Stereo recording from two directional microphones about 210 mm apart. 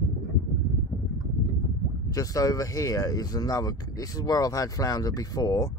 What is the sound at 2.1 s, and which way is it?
Speech, 15° left (ahead or behind).